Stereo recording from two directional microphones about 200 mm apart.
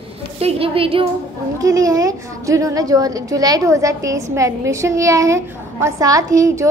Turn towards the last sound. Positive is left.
turn(degrees=-15)  # may be behind; listen again after turning